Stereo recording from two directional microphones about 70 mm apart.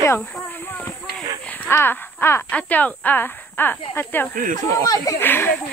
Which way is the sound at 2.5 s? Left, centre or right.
Left.